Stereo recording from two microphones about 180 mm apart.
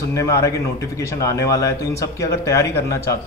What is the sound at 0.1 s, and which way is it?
Speech, 15° left (ahead or behind).